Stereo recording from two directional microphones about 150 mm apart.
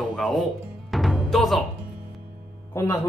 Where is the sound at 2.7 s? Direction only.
20° left (ahead or behind).